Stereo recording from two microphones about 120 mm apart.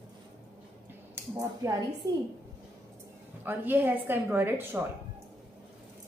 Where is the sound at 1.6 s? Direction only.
25° right (ahead or behind).